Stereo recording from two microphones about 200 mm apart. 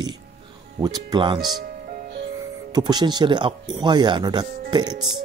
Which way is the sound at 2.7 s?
20° right (ahead or behind).